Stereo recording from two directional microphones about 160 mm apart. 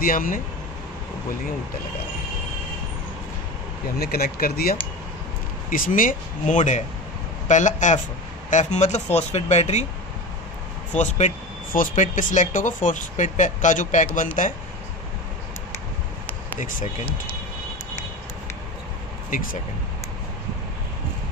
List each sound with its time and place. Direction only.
0.0 s speech: 60° left (ahead or behind)
4.0 s speech: 75° left (ahead or behind)
5.7 s speech: 55° left (ahead or behind)
11.0 s speech: 45° left (ahead or behind)